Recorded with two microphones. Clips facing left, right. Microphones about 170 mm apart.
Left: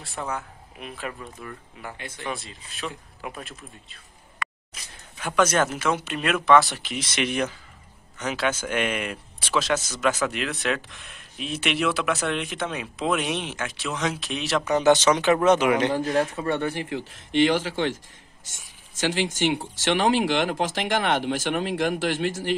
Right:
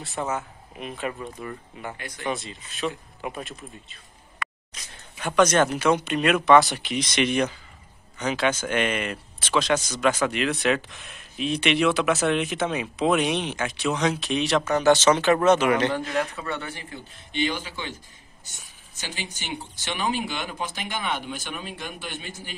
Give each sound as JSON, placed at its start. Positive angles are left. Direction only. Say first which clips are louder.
{"t": 0.0, "sound": "speech", "louder": "right 3 dB", "side_deg": 0}
{"t": 2.0, "sound": "speech", "louder": "even", "side_deg": 25}
{"t": 2.2, "sound": "speech", "louder": "right 4 dB", "side_deg": 0}
{"t": 5.2, "sound": "speech", "louder": "right 2 dB", "side_deg": 5}
{"t": 14.6, "sound": "speech", "louder": "left 2 dB", "side_deg": 20}
{"t": 16.1, "sound": "a man's voice", "louder": "left 4 dB", "side_deg": 45}
{"t": 16.9, "sound": "speech", "louder": "left 9 dB", "side_deg": 90}